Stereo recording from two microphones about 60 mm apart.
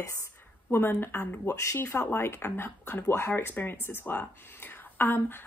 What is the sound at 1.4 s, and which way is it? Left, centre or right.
Speech, left.